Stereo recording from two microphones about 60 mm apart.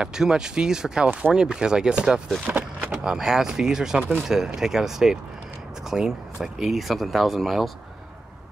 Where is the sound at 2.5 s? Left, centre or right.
Right.